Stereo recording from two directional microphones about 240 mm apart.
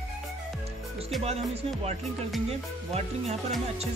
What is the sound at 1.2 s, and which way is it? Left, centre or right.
Music, right.